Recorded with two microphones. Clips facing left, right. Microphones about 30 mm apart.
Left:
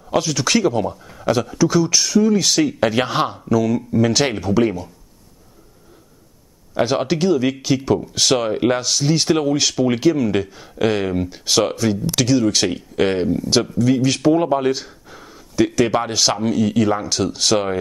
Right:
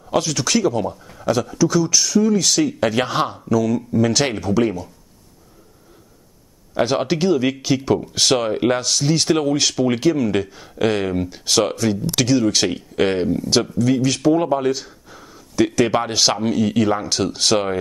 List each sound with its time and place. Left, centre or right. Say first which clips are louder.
0.0 s speech: left 1 dB; centre
0.5 s speech: left 2 dB; left
0.7 s speech: left 1 dB; centre
6.7 s speech: even; centre
14.0 s speech: left 1 dB; centre
15.5 s speech: even; centre